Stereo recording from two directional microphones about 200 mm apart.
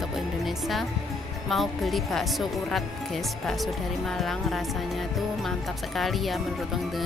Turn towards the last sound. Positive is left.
turn(degrees=0)  # may be behind; listen again after turning